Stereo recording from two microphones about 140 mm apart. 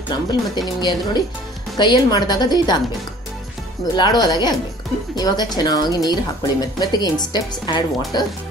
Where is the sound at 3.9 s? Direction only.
30° left (ahead or behind).